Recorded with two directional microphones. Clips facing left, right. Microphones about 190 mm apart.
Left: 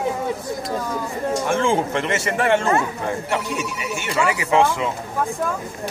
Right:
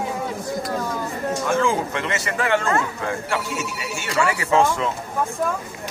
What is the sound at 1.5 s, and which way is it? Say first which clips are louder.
Speech: left 1 dB; 25° left (ahead or behind).